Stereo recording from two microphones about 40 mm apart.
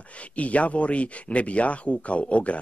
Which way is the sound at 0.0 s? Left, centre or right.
Left.